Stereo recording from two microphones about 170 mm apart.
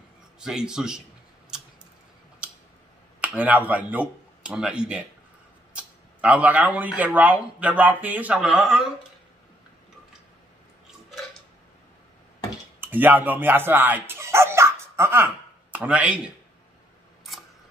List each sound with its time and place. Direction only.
0.4 s a man's voice: 5° right (ahead or behind)
3.2 s speech: 10° right (ahead or behind)
12.8 s speech: 10° right (ahead or behind)